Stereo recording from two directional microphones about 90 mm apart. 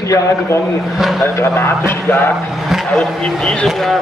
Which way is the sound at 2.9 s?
10° left (ahead or behind).